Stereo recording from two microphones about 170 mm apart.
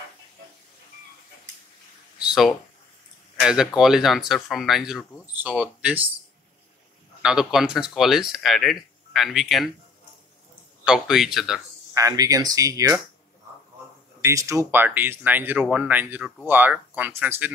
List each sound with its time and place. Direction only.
2.1 s a sound: 5° right (ahead or behind)
3.3 s speech: 5° right (ahead or behind)
7.2 s speech: 5° right (ahead or behind)
10.9 s speech: 5° right (ahead or behind)
11.9 s speech: 20° right (ahead or behind)
14.2 s speech: 20° right (ahead or behind)